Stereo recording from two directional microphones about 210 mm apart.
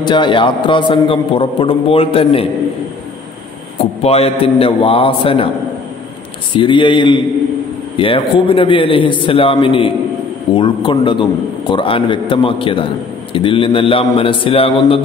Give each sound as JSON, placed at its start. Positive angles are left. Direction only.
{"t": 0.0, "sound": "a man's voice", "side_deg": 20}
{"t": 4.0, "sound": "a man's voice", "side_deg": 30}
{"t": 6.5, "sound": "a man's voice", "side_deg": 25}